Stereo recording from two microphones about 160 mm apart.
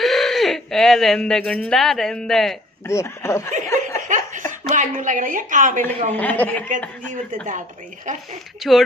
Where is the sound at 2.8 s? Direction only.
15° left (ahead or behind).